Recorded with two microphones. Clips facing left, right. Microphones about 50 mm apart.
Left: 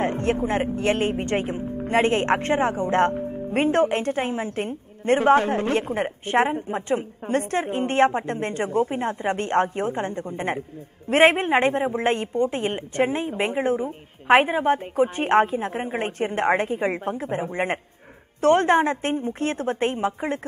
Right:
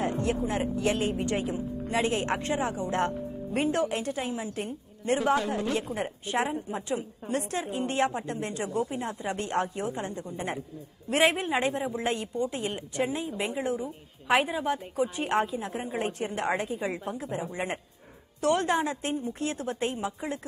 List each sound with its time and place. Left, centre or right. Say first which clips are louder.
0.0 s a woman's voice: left 5 dB; left